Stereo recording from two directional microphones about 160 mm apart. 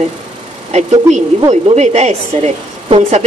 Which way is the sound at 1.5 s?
45° right (ahead or behind).